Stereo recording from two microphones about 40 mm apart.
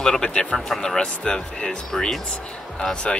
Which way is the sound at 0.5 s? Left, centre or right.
Centre.